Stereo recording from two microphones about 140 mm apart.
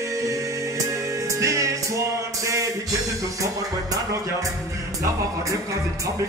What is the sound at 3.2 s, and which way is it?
Speech, 25° right (ahead or behind).